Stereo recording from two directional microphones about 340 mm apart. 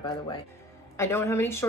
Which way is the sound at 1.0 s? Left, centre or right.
Centre.